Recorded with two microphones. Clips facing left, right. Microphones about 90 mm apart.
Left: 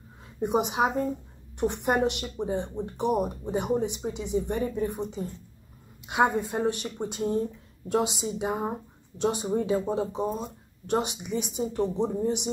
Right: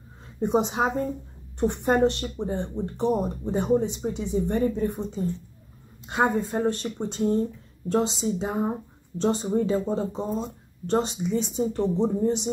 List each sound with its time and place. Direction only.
0.4 s speech: 10° left (ahead or behind)
1.6 s speech: 15° left (ahead or behind)